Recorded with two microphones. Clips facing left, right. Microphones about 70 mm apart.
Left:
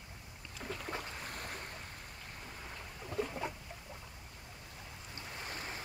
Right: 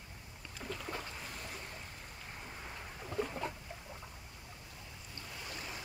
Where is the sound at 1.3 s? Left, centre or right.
Left.